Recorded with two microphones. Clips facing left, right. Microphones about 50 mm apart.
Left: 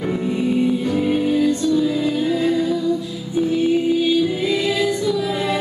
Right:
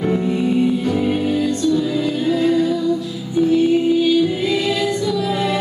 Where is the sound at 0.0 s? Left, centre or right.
Centre.